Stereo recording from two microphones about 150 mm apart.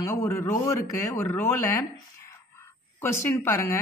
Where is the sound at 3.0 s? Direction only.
15° left (ahead or behind).